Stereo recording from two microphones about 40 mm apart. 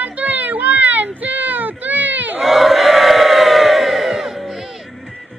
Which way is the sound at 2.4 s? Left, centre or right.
Centre.